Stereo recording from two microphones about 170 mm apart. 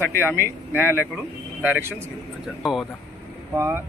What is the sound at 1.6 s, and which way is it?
Speech, 10° right (ahead or behind).